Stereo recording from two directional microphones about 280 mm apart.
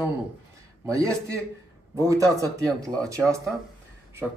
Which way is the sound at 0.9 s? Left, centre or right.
Centre.